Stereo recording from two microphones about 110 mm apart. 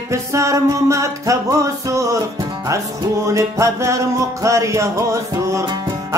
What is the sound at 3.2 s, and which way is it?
Music, 30° right (ahead or behind).